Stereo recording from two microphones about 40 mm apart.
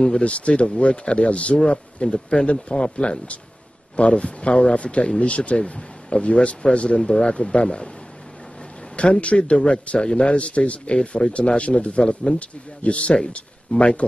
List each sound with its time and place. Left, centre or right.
0.2 s a man's voice: left
7.0 s speech: centre
7.2 s a man's voice: left
8.9 s a man's voice: left